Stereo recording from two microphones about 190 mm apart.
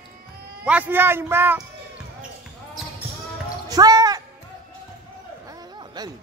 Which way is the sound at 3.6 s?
20° right (ahead or behind).